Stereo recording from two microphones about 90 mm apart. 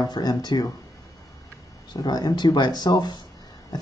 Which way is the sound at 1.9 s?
50° left (ahead or behind).